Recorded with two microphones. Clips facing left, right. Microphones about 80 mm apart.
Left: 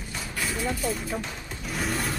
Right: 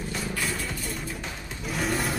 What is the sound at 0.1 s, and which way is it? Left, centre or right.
Vehicle, centre.